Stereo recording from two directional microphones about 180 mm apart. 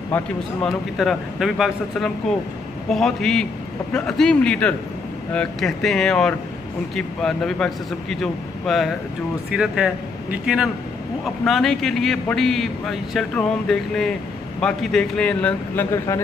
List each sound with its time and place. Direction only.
0.1 s a man's voice: 10° left (ahead or behind)